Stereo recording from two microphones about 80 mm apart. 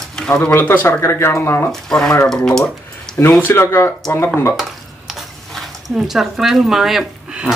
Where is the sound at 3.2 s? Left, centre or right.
Left.